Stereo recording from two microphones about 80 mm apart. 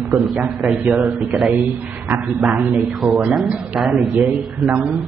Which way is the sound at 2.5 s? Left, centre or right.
Centre.